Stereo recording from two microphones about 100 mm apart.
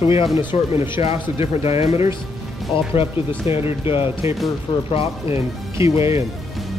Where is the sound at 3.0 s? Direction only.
90° left.